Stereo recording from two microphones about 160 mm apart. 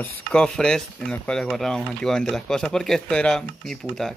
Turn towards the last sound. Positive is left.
turn(degrees=5)  # may be behind; listen again after turning